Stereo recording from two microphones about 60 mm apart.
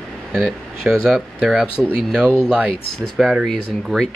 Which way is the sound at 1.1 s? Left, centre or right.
Centre.